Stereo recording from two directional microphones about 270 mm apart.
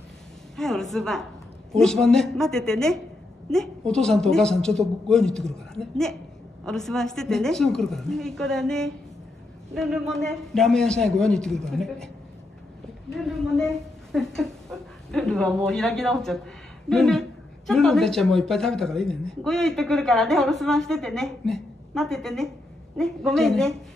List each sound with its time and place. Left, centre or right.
0.6 s a woman's voice: centre
13.1 s a woman's voice: centre